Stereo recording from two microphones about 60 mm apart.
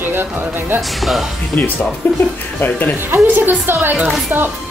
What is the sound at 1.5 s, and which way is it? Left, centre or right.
Speech, left.